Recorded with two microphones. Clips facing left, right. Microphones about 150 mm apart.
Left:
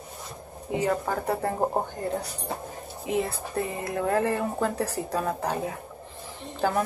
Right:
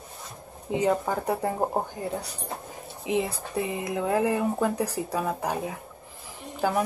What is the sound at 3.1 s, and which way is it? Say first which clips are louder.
Speech: right 1 dB; 15° right (ahead or behind).